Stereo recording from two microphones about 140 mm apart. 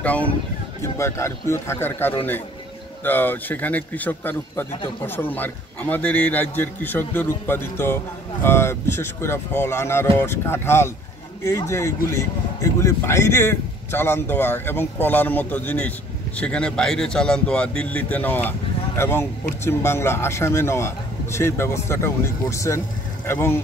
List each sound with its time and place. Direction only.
0.0 s a man's voice: 10° left (ahead or behind)